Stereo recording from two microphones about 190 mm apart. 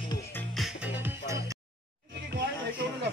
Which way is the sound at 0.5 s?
5° right (ahead or behind).